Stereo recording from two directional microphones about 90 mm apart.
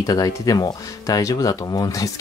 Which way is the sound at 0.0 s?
45° left (ahead or behind).